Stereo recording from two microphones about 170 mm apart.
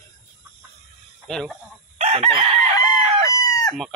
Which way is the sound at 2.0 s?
35° right (ahead or behind).